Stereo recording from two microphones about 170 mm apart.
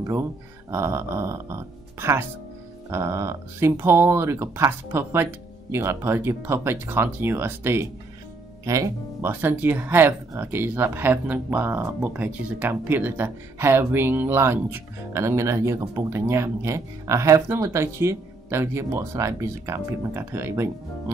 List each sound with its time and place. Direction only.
0.0 s speech: 15° right (ahead or behind)